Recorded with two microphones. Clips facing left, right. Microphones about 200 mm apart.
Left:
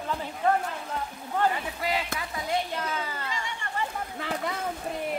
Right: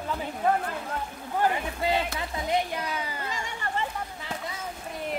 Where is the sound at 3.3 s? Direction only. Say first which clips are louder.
Right 2 dB; 45° right (ahead or behind).